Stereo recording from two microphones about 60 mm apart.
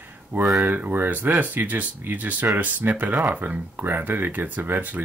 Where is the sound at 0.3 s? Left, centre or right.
Right.